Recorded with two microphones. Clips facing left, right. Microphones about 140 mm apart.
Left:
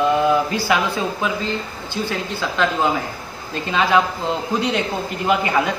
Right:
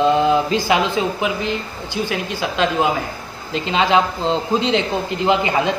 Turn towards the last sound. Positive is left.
turn(degrees=-20)  # may be behind; listen again after turning